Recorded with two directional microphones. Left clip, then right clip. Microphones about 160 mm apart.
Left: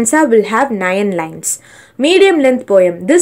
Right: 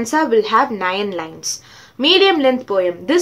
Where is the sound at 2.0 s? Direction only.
25° left (ahead or behind).